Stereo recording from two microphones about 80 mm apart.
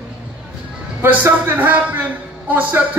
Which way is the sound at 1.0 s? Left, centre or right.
Right.